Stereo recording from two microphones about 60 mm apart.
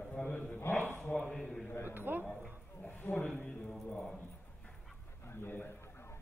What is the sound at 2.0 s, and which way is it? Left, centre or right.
Speech, right.